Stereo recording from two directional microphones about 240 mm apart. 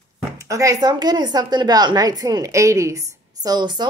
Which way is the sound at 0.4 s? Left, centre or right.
Centre.